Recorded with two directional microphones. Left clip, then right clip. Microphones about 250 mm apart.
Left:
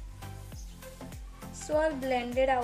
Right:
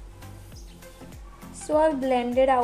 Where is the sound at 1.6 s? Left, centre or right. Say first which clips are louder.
Right 7 dB; centre.